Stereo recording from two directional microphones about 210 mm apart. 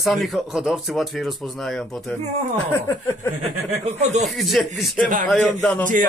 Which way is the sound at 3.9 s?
35° right (ahead or behind).